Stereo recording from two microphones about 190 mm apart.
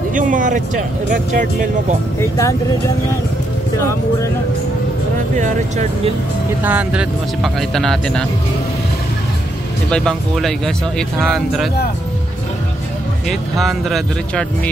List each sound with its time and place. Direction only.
0.1 s speech: 45° right (ahead or behind)
2.1 s speech: 15° left (ahead or behind)
5.4 s speech: 35° right (ahead or behind)
6.6 s speech: 10° right (ahead or behind)
9.8 s speech: 5° left (ahead or behind)
13.3 s speech: centre (ahead or behind)